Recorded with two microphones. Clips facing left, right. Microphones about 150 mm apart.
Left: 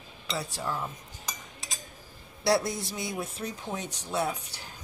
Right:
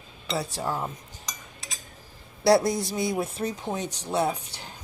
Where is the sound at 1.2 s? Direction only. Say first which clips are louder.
Left 3 dB; centre (ahead or behind).